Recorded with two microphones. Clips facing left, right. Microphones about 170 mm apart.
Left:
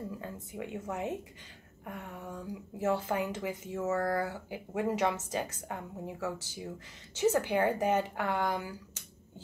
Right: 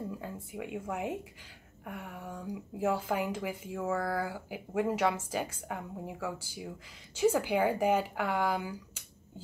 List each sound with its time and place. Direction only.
0.2 s speech: 10° right (ahead or behind)